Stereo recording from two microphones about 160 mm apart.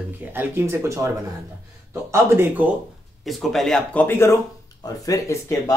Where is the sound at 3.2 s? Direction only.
Centre (ahead or behind); by 5.7 s 20° left (ahead or behind).